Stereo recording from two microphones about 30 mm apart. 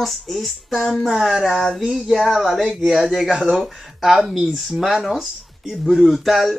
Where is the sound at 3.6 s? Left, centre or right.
Centre.